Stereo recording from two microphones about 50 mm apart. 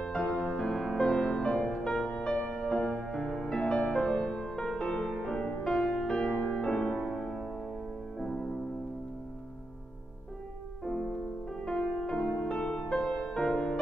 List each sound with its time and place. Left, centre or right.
0.2 s music: centre
10.8 s music: centre
11.6 s music: left
11.9 s music: centre
12.4 s music: centre